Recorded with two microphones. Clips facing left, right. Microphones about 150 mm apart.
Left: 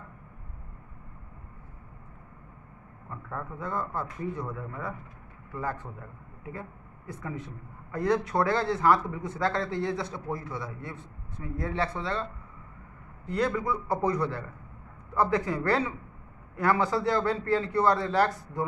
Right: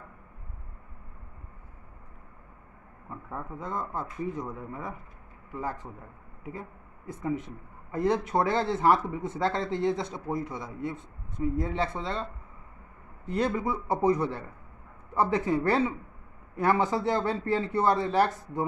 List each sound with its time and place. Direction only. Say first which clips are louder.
3.3 s a man's voice: left 1 dB; 20° right (ahead or behind)
7.1 s a man's voice: right 6 dB; 25° right (ahead or behind)
13.3 s a man's voice: even; 25° right (ahead or behind)